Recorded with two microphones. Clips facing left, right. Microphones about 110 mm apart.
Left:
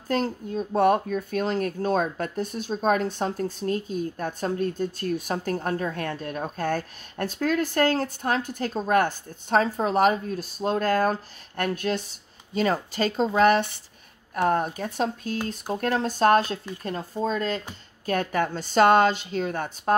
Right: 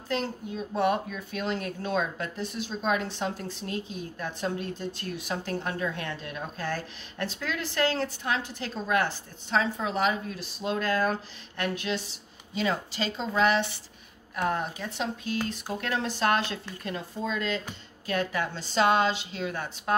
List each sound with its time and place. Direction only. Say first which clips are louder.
0.1 s speech: left 5 dB; 45° left (ahead or behind)